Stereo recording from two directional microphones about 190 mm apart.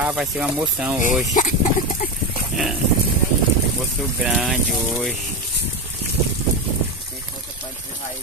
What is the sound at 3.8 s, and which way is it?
Speech, centre (ahead or behind).